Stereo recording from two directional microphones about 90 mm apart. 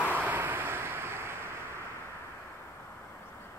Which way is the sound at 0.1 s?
20° right (ahead or behind).